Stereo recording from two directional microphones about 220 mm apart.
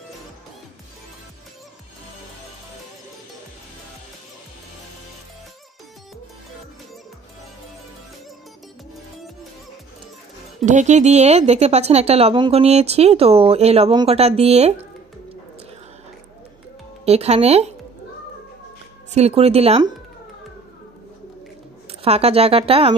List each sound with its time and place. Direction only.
10.6 s speech: 35° right (ahead or behind)
17.0 s speech: 30° right (ahead or behind)
19.1 s speech: 30° right (ahead or behind)
22.0 s speech: 25° right (ahead or behind)